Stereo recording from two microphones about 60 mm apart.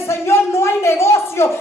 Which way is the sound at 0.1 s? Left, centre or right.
Left.